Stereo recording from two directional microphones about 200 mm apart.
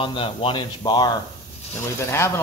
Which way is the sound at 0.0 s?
25° left (ahead or behind).